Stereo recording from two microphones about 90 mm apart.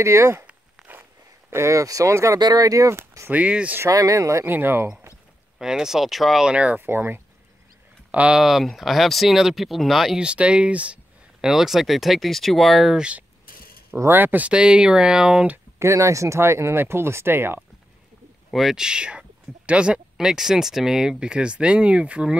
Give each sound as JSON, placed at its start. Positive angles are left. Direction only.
{"t": 0.0, "sound": "speech", "side_deg": -30}
{"t": 0.5, "sound": "walk", "side_deg": -20}
{"t": 1.5, "sound": "speech", "side_deg": -35}
{"t": 2.3, "sound": "speech", "side_deg": -45}
{"t": 3.3, "sound": "speech", "side_deg": -15}
{"t": 3.8, "sound": "speech", "side_deg": -40}
{"t": 5.6, "sound": "speech", "side_deg": -5}
{"t": 8.4, "sound": "speech", "side_deg": -5}
{"t": 13.9, "sound": "speech", "side_deg": -25}
{"t": 15.8, "sound": "speech", "side_deg": -35}
{"t": 18.5, "sound": "speech", "side_deg": 0}